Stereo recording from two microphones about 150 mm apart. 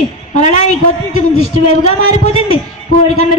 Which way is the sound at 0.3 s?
50° left (ahead or behind).